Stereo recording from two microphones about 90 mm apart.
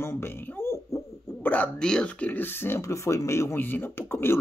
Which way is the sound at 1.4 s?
20° left (ahead or behind).